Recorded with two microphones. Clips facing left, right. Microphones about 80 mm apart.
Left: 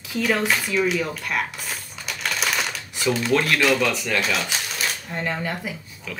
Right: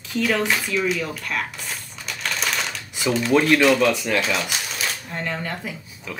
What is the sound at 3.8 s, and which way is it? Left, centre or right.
Speech, centre.